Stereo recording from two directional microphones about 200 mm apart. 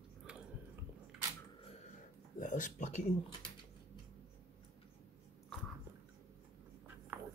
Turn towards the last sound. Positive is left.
turn(degrees=-5)  # may be behind; listen again after turning